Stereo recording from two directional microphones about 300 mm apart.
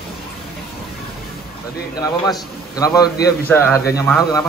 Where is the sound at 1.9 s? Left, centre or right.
Centre.